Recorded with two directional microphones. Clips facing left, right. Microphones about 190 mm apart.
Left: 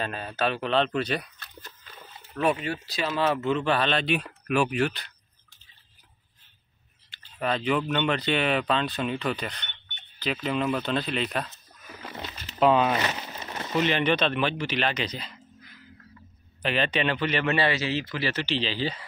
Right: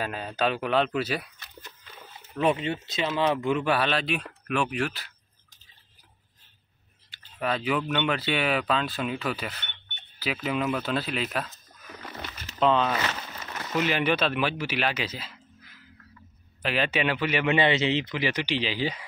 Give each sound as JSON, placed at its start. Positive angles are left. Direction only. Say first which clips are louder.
{"t": 0.0, "sound": "speech", "louder": "right 1 dB", "side_deg": -15}
{"t": 2.0, "sound": "a sound", "louder": "right 1 dB", "side_deg": -10}
{"t": 2.4, "sound": "speech", "louder": "right 1 dB", "side_deg": -20}
{"t": 7.1, "sound": "speech", "louder": "left 1 dB", "side_deg": -5}
{"t": 12.9, "sound": "a sound", "louder": "left 2 dB", "side_deg": 20}
{"t": 13.7, "sound": "a man's voice", "louder": "left 1 dB", "side_deg": -5}